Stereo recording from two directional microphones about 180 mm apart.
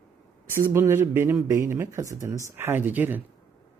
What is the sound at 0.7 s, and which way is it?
Speech, 15° right (ahead or behind).